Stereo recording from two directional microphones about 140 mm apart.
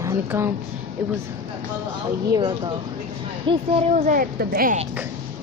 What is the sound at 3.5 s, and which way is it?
Speech, 50° right (ahead or behind).